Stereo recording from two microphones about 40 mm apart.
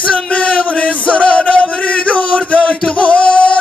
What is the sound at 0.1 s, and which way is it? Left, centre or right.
Music, left.